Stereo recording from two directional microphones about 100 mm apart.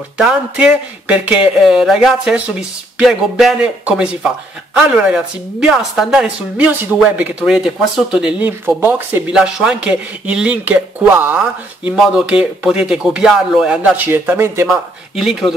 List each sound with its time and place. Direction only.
0.2 s speech: 10° right (ahead or behind)
6.5 s speech: 15° right (ahead or behind)
9.3 s speech: 10° right (ahead or behind)
11.9 s speech: 5° right (ahead or behind); by 14.7 s 25° right (ahead or behind)
14.7 s speech: centre (ahead or behind)